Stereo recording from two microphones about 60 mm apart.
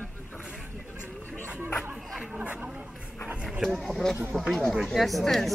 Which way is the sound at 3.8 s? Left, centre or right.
Centre.